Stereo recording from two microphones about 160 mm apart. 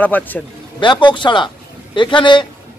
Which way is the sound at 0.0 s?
10° left (ahead or behind).